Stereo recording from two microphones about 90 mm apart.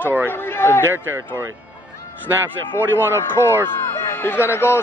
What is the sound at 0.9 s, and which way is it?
Speech, 25° right (ahead or behind).